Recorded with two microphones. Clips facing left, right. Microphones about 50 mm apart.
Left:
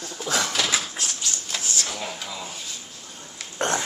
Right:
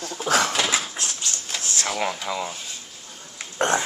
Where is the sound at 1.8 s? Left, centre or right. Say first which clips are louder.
Right 7 dB; right.